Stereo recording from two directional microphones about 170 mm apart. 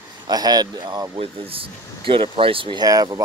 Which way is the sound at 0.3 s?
25° right (ahead or behind).